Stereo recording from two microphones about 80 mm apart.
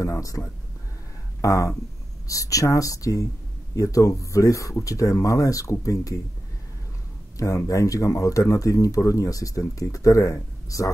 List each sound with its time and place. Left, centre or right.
0.0 s speech: left
1.4 s speech: left
7.3 s speech: left